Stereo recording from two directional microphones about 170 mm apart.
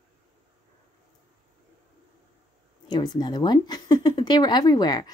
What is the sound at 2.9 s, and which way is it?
A woman's voice, 25° left (ahead or behind).